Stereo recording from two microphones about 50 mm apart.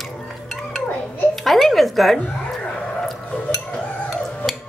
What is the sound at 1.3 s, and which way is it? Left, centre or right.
Speech, centre.